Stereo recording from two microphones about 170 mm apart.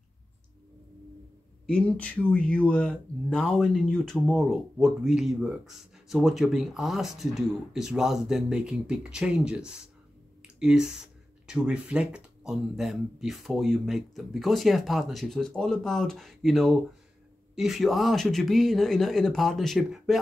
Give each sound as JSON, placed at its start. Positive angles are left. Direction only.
{"t": 1.7, "sound": "speech", "side_deg": 5}